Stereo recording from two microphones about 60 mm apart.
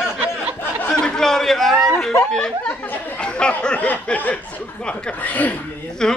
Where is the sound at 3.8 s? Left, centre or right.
Left.